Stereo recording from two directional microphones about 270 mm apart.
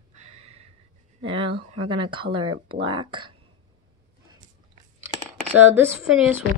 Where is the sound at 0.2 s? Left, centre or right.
Right.